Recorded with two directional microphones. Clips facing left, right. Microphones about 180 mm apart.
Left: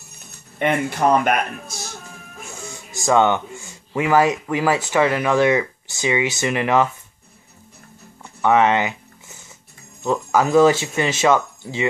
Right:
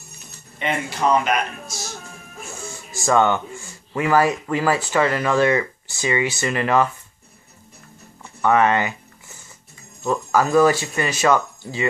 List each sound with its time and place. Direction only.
0.6 s speech: 55° left (ahead or behind)
2.7 s speech: 20° left (ahead or behind)
8.4 s a sound: 15° left (ahead or behind)
10.3 s speech: 20° left (ahead or behind)